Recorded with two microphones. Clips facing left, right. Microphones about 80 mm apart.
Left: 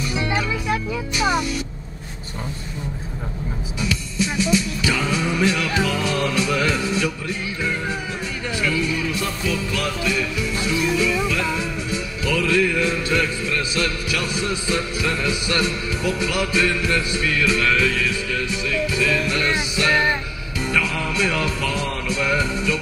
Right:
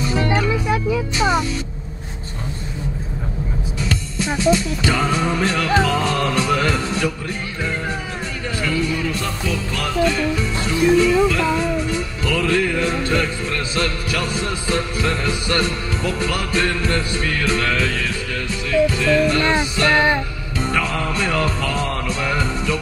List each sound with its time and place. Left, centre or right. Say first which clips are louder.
0.1 s music: right 4 dB; right
0.5 s music: right 4 dB; right
4.4 s music: right 4 dB; right
8.5 s music: right 1 dB; right